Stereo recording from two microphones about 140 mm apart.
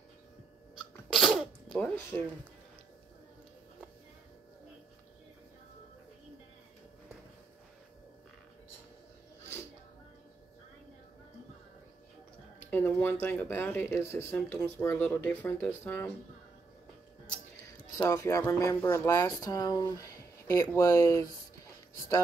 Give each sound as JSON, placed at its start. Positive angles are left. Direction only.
{"t": 1.1, "sound": "sneeze", "side_deg": 0}
{"t": 2.1, "sound": "speech", "side_deg": 10}
{"t": 12.7, "sound": "speech", "side_deg": 15}
{"t": 18.1, "sound": "speech", "side_deg": 20}